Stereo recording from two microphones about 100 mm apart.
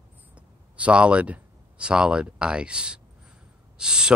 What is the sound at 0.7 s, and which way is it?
Speech, 10° right (ahead or behind).